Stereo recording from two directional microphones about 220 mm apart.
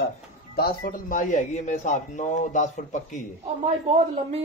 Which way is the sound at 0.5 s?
45° left (ahead or behind).